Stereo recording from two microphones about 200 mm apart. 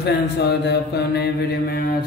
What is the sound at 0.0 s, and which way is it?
Mantra, 55° left (ahead or behind).